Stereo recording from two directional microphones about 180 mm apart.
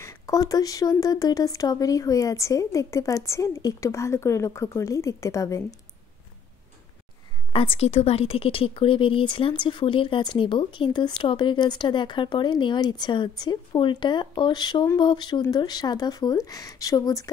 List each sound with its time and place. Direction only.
0.0 s speech: 15° left (ahead or behind)
7.5 s a woman's voice: 30° left (ahead or behind)